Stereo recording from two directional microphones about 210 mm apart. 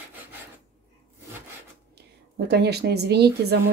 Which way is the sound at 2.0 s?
50° right (ahead or behind).